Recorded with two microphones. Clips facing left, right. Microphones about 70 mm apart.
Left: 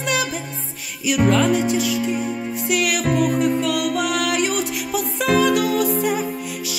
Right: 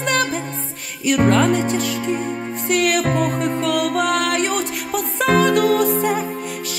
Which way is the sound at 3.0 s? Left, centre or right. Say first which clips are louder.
Even; right.